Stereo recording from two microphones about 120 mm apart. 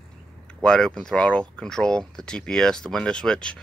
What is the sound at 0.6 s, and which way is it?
Speech, 5° left (ahead or behind).